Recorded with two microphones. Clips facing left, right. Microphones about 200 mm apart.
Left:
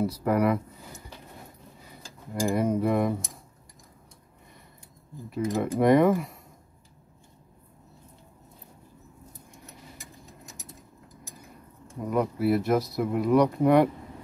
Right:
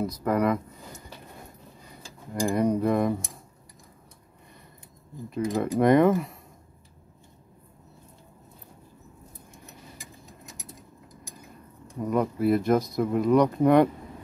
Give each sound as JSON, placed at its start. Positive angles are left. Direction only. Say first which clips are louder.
{"t": 0.0, "sound": "speech", "louder": "left 1 dB", "side_deg": 10}
{"t": 2.5, "sound": "speech", "louder": "right 1 dB", "side_deg": 5}
{"t": 5.3, "sound": "speech", "louder": "right 1 dB", "side_deg": 5}
{"t": 12.1, "sound": "speech", "louder": "right 1 dB", "side_deg": 5}